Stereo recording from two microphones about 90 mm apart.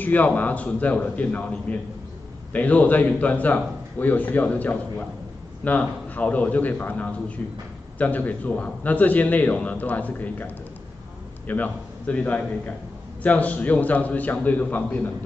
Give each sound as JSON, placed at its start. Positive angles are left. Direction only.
{"t": 0.0, "sound": "a man's voice", "side_deg": 20}